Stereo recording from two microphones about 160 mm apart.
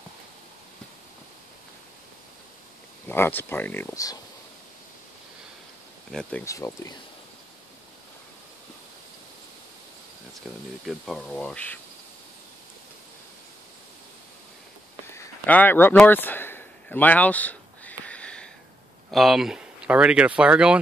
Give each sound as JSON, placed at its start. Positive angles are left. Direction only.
{"t": 3.1, "sound": "speech", "side_deg": 10}
{"t": 6.4, "sound": "speech", "side_deg": 20}
{"t": 10.9, "sound": "speech", "side_deg": 0}
{"t": 15.1, "sound": "a sound", "side_deg": 10}
{"t": 19.0, "sound": "speech", "side_deg": 0}